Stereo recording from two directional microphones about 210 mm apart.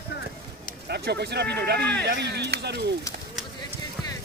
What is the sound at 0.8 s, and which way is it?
Speech, 50° right (ahead or behind).